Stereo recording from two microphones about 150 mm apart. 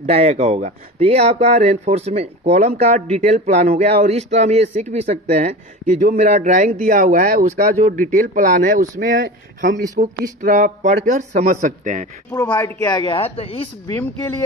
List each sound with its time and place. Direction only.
0.0 s speech: 45° right (ahead or behind); by 9.8 s 70° right (ahead or behind)
9.9 s speech: 60° right (ahead or behind)
12.3 s speech: 15° left (ahead or behind)
12.9 s speech: 35° left (ahead or behind)